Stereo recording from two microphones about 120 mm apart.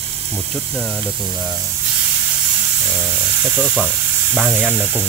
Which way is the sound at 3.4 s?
10° right (ahead or behind).